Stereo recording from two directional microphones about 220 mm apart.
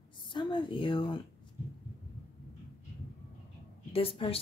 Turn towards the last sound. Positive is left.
turn(degrees=25)  # may be behind; listen again after turning